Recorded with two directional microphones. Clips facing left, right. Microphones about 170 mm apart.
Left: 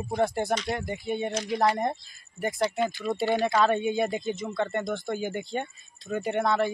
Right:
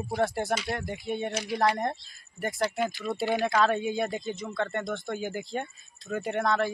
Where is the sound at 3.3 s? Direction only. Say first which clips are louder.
Left 1 dB; centre (ahead or behind).